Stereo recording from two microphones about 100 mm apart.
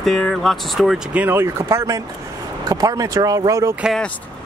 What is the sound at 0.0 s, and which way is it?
Speech, 5° left (ahead or behind).